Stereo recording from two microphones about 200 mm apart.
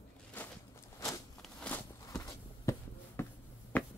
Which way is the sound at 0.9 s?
15° left (ahead or behind).